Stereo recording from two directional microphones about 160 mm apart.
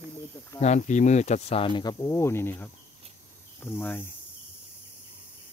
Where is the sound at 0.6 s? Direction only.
45° left (ahead or behind); by 4.0 s 15° left (ahead or behind).